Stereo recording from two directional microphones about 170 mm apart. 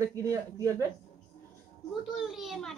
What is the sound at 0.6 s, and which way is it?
Speech, 20° right (ahead or behind).